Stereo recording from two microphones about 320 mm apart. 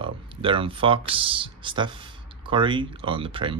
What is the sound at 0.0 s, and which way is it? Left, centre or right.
Speech, centre.